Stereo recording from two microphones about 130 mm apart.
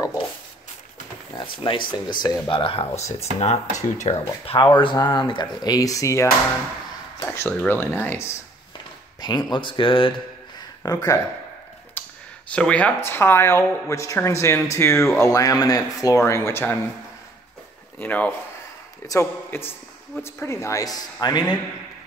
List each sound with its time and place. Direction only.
1.6 s speech: 40° left (ahead or behind)
3.0 s speech: 60° left (ahead or behind)
4.5 s speech: 40° left (ahead or behind)
7.2 s speech: 15° left (ahead or behind)
9.2 s speech: 35° left (ahead or behind)
10.8 s speech: 25° left (ahead or behind)
12.0 s clicking: 15° left (ahead or behind)
12.4 s speech: 10° left (ahead or behind)
17.9 s speech: 10° left (ahead or behind); by 21.5 s 30° left (ahead or behind)